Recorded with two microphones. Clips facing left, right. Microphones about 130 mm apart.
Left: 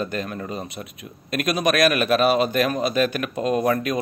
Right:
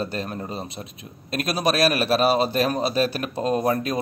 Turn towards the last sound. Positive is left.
turn(degrees=-30)  # may be behind; listen again after turning